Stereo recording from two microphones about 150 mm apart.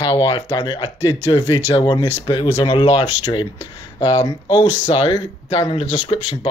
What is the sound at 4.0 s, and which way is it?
Speech, 35° left (ahead or behind).